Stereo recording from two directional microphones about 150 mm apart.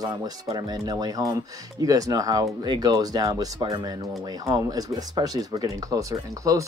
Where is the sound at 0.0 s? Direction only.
30° right (ahead or behind).